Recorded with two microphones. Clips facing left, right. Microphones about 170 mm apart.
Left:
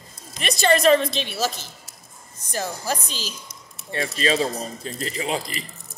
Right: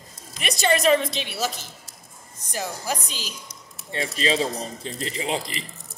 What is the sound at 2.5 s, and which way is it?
A woman's voice, 15° right (ahead or behind).